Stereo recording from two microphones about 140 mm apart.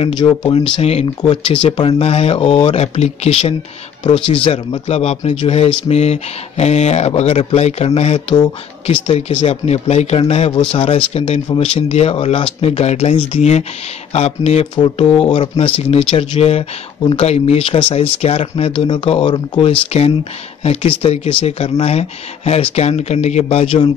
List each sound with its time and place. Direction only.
0.2 s a man's voice: 40° left (ahead or behind)